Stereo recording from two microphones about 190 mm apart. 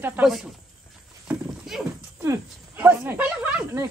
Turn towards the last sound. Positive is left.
turn(degrees=-10)  # may be behind; listen again after turning